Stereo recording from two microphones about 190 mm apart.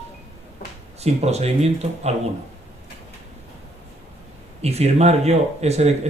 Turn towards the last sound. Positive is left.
turn(degrees=-35)  # may be behind; listen again after turning